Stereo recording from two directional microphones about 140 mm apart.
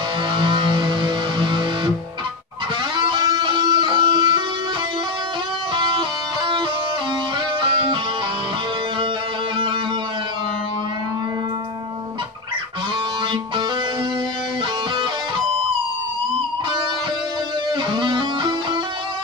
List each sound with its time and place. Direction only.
0.3 s music: 35° right (ahead or behind)
3.0 s music: 30° right (ahead or behind)
5.8 s music: 35° right (ahead or behind)
7.6 s music: 35° right (ahead or behind)
17.9 s music: 35° right (ahead or behind)